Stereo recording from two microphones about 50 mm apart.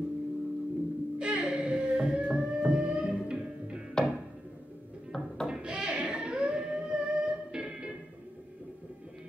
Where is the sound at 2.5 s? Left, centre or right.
Centre.